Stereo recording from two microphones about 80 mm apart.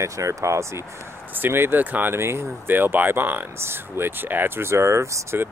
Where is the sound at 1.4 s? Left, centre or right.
Right.